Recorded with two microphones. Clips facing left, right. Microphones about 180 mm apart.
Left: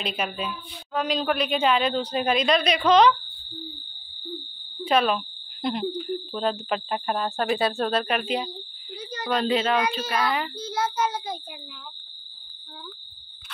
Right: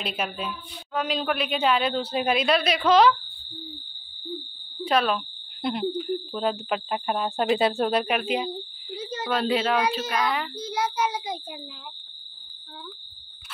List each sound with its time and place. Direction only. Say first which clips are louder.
0.0 s a woman's voice: left 1 dB; 5° right (ahead or behind)
4.8 s speech: left 1 dB; centre (ahead or behind); by 8.2 s 15° right (ahead or behind)
8.9 s a sound: right 2 dB; 25° right (ahead or behind)
9.3 s a woman's voice: left 1 dB; 5° right (ahead or behind)
10.5 s speech: even; 15° right (ahead or behind)